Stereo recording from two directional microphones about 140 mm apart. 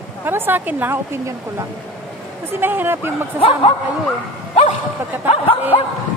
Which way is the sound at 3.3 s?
40° left (ahead or behind).